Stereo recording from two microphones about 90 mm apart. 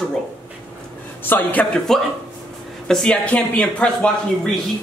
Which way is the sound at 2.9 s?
10° left (ahead or behind).